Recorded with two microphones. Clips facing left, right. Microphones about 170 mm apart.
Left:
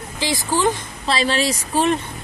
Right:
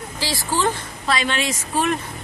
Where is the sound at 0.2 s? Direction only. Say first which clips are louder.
Left 3 dB; 20° left (ahead or behind).